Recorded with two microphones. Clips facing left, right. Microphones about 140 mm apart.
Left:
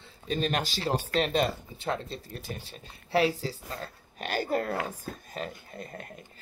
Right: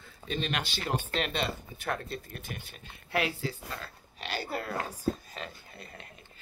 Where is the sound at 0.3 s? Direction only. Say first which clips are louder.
Left 4 dB; 40° left (ahead or behind).